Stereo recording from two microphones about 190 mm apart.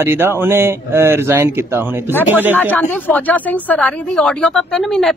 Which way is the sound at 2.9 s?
10° left (ahead or behind).